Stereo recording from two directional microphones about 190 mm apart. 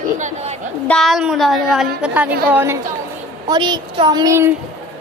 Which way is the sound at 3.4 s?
25° right (ahead or behind).